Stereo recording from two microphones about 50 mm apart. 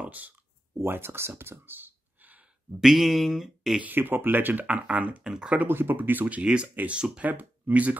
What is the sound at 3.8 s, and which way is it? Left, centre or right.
Speech, right.